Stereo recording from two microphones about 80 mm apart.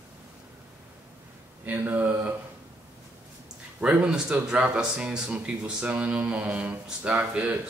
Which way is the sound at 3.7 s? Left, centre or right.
Centre.